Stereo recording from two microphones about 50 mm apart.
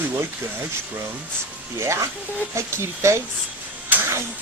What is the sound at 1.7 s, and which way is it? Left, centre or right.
Speech, right.